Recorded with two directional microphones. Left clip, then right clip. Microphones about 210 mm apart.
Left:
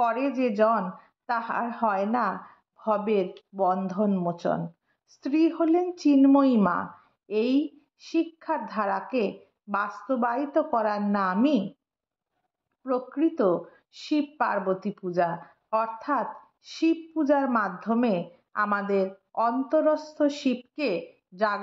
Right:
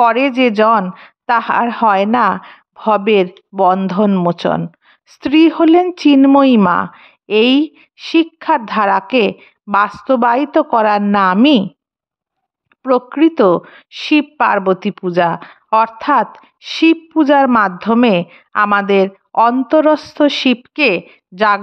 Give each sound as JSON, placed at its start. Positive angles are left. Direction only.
{"t": 0.0, "sound": "a woman's voice", "side_deg": -35}
{"t": 12.8, "sound": "a woman's voice", "side_deg": -40}